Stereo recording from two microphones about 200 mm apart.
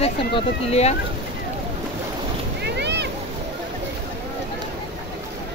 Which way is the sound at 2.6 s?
60° right (ahead or behind).